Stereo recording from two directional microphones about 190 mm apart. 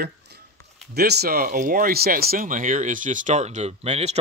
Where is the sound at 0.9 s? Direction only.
55° right (ahead or behind).